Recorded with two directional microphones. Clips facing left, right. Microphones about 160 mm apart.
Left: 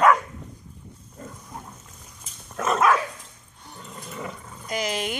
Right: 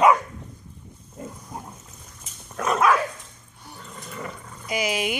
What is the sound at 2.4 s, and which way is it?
Dog, centre (ahead or behind).